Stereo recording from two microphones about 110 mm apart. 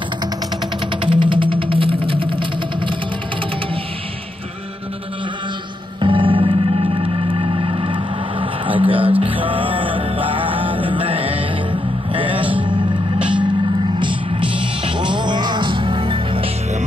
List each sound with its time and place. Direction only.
1.0 s music: 50° right (ahead or behind)
5.9 s music: 50° right (ahead or behind)